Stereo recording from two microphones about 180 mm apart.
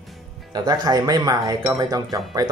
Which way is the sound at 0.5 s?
25° right (ahead or behind).